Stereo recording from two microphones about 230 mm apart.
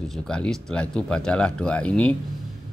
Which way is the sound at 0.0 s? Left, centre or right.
Centre.